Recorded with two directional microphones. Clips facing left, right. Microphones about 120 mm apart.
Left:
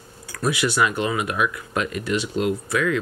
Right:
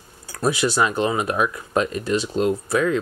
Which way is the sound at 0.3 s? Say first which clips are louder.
Right 2 dB; 30° right (ahead or behind).